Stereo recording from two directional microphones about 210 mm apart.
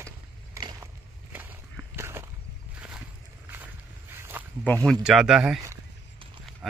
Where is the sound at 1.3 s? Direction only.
10° right (ahead or behind).